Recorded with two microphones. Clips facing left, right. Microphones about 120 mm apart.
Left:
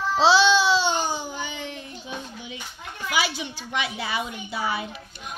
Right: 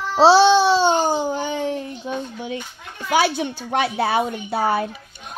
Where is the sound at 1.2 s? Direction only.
40° right (ahead or behind).